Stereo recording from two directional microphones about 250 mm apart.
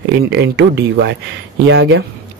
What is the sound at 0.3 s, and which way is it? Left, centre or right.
Speech, right.